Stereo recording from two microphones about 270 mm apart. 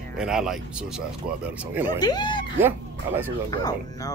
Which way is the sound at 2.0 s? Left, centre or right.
Centre.